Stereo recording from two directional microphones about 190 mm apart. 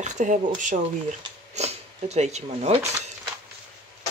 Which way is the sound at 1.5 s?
35° right (ahead or behind).